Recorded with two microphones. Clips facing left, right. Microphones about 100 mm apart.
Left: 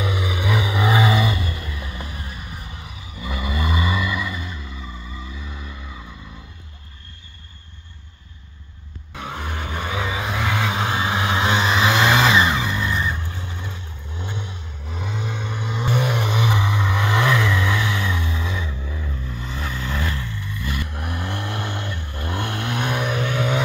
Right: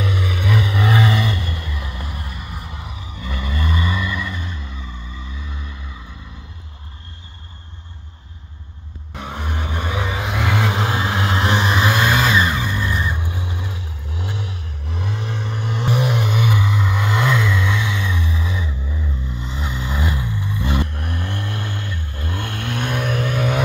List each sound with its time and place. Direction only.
0.0 s vehicle: 5° left (ahead or behind)
2.8 s vehicle: 35° right (ahead or behind)
3.2 s vehicle: 10° left (ahead or behind)
9.1 s vehicle: 5° right (ahead or behind)
16.3 s music: 20° left (ahead or behind)
16.6 s vehicle: 5° right (ahead or behind)
18.0 s vehicle: 15° right (ahead or behind)
20.9 s vehicle: 15° left (ahead or behind)
22.8 s vehicle: 5° left (ahead or behind)